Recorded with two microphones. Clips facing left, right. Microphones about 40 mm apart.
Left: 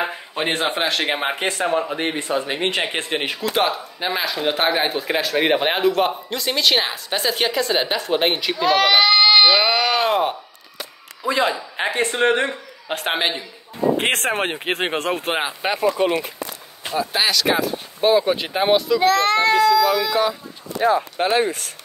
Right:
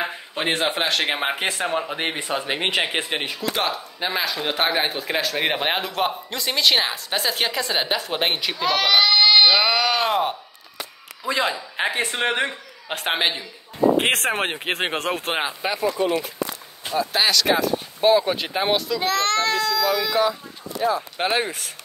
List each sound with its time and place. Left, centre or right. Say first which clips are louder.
0.0 s speech: left 2 dB; centre
2.3 s speech: left 2 dB; right
2.7 s speech: even; centre
3.5 s speech: left 4 dB; centre
15.6 s speech: left 5 dB; left
16.9 s speech: even; centre
21.2 s speech: left 2 dB; right
21.5 s speech: left 5 dB; centre